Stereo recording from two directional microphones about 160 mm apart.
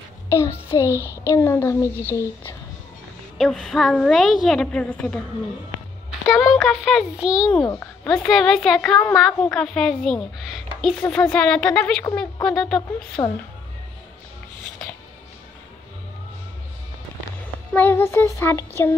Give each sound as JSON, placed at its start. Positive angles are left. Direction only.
{"t": 0.3, "sound": "child singing", "side_deg": 15}
{"t": 0.9, "sound": "a child's voice", "side_deg": -15}
{"t": 1.3, "sound": "a woman's voice", "side_deg": 15}
{"t": 3.3, "sound": "a woman's voice", "side_deg": 0}
{"t": 6.2, "sound": "a woman's voice", "side_deg": 0}
{"t": 7.6, "sound": "a sound", "side_deg": 20}
{"t": 8.1, "sound": "a woman's voice", "side_deg": 0}
{"t": 17.7, "sound": "a woman's voice", "side_deg": 10}